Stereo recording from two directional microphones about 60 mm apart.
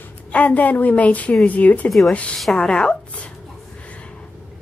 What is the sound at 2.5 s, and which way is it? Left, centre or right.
Speech, centre.